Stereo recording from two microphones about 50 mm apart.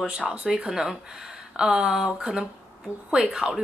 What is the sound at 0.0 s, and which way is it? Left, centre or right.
A woman's voice, centre.